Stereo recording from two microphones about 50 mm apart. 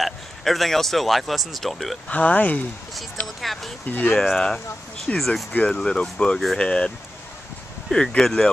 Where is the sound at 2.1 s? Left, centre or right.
Left.